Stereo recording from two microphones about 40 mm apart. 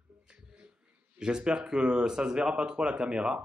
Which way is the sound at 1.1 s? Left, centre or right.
Centre.